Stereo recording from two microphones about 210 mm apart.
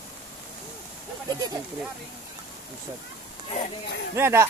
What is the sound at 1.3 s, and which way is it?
Speech, 20° right (ahead or behind).